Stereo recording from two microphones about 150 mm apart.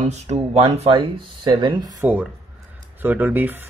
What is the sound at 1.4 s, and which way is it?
Speech, 30° right (ahead or behind).